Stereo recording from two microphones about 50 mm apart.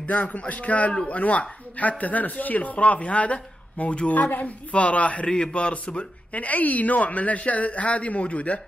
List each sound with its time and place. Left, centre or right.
0.0 s speech: left